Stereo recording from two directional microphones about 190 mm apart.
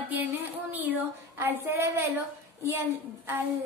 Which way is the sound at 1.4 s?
10° right (ahead or behind).